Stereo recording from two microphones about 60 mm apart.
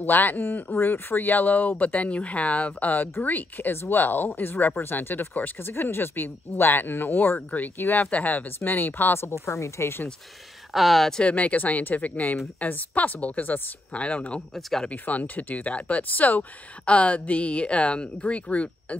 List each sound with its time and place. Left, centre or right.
0.0 s speech: left
10.7 s speech: centre
11.1 s speech: left
14.5 s speech: centre
14.9 s speech: left